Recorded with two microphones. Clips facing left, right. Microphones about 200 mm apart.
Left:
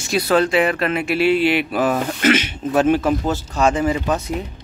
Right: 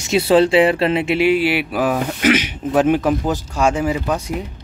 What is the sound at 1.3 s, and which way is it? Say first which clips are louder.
Speech: even; 10° right (ahead or behind).